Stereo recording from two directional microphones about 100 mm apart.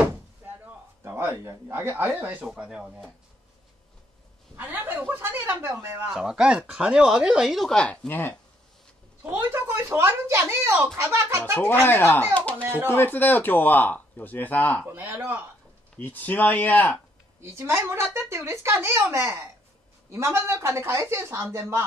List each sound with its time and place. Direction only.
1.0 s speech: 25° right (ahead or behind); by 2.9 s 10° right (ahead or behind)
4.6 s speech: 20° right (ahead or behind)
6.1 s speech: 10° right (ahead or behind); by 8.4 s 20° left (ahead or behind)
9.2 s speech: 20° right (ahead or behind)
11.8 s speech: 20° left (ahead or behind)
12.6 s speech: 20° right (ahead or behind)
12.9 s speech: 20° left (ahead or behind)
14.9 s speech: 20° right (ahead or behind)
16.0 s speech: 15° left (ahead or behind)
17.4 s speech: 25° right (ahead or behind)